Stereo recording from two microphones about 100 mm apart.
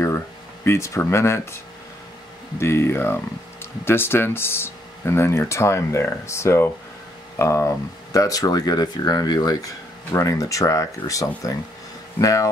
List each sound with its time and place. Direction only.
0.7 s speech: 30° left (ahead or behind)
2.6 s speech: 25° left (ahead or behind)